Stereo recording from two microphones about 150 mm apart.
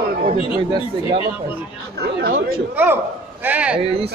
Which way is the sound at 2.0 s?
90° right.